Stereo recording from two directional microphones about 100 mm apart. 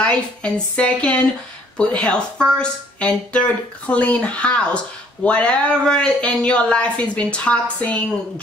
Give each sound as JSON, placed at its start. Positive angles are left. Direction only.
{"t": 0.0, "sound": "speech", "side_deg": 10}